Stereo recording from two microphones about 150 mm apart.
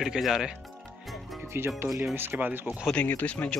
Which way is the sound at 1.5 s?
15° right (ahead or behind).